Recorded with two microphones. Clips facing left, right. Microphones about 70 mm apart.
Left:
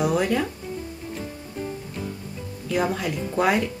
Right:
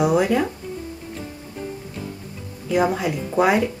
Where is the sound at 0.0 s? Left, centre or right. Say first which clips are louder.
Right 4 dB; centre.